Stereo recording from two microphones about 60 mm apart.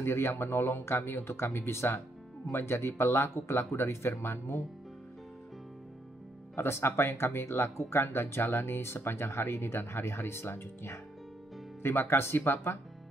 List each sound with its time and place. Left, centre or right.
0.0 s speech: left
6.5 s speech: left